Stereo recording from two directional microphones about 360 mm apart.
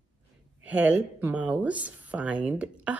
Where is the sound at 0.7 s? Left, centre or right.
Centre.